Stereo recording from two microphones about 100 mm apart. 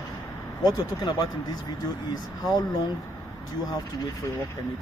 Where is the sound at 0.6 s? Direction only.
45° left (ahead or behind).